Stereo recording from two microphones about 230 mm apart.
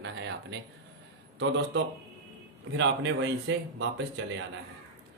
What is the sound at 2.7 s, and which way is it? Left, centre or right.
Speech, right.